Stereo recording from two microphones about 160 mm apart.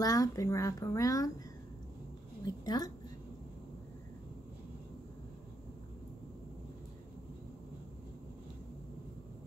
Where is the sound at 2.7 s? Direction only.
25° left (ahead or behind).